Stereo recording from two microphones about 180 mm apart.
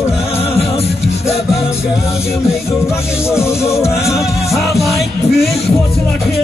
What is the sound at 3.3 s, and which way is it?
Music, 15° left (ahead or behind).